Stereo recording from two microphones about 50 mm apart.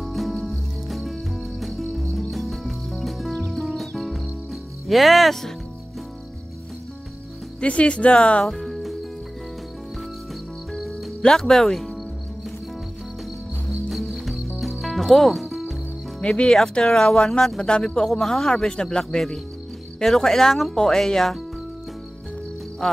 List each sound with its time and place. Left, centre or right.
0.0 s music: centre
4.8 s speech: centre
7.6 s speech: left
8.5 s music: centre
11.1 s a man's voice: centre
13.8 s cricket: centre
16.2 s a man's voice: centre